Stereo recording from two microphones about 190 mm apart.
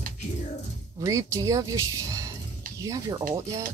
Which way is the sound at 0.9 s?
15° right (ahead or behind).